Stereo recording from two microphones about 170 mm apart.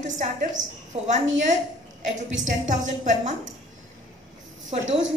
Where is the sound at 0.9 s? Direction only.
40° right (ahead or behind).